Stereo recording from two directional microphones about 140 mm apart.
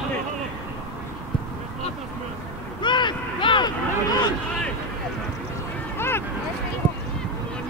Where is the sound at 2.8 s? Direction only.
35° left (ahead or behind).